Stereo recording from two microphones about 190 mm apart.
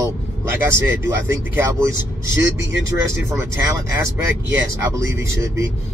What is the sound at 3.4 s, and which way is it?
A man's voice, 15° right (ahead or behind).